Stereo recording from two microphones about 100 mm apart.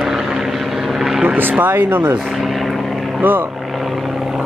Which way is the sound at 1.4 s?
20° right (ahead or behind).